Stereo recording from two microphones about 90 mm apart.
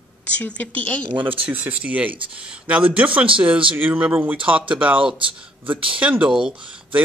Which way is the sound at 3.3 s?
15° right (ahead or behind).